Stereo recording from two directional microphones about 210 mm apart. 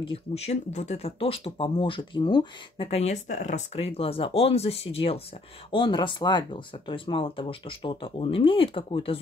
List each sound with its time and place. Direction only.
0.0 s speech: 25° left (ahead or behind)